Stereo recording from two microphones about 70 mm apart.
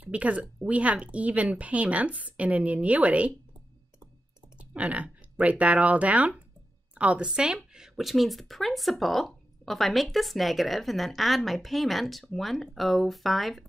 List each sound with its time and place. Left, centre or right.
0.0 s a woman's voice: right
4.6 s a woman's voice: centre